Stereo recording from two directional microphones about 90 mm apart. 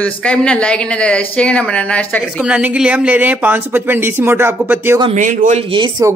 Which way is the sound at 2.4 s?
10° right (ahead or behind).